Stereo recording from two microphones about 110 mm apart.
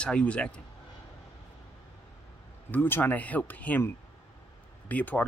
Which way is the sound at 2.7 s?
15° left (ahead or behind).